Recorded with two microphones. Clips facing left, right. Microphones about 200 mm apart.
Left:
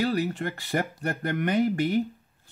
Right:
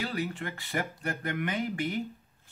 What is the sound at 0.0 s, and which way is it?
Speech, 40° left (ahead or behind).